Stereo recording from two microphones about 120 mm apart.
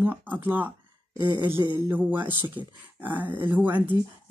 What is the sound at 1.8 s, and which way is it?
Speech, 15° right (ahead or behind).